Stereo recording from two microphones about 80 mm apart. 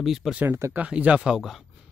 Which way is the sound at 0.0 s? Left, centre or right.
Centre.